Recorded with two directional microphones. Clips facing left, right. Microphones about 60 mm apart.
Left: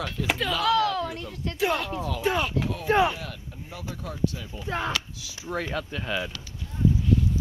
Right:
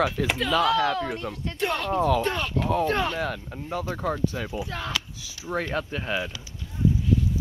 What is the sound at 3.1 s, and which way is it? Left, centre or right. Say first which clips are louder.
Speech: right 9 dB; right.